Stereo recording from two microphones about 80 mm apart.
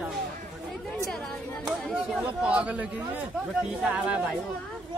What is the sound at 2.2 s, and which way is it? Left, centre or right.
Speech, centre.